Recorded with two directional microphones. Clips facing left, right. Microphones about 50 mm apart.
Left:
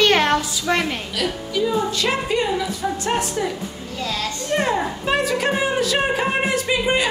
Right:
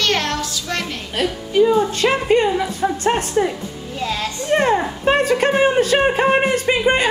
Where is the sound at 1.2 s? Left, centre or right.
Right.